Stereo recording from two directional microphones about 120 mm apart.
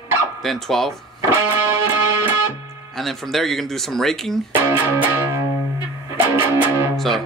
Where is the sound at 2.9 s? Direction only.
Centre (ahead or behind).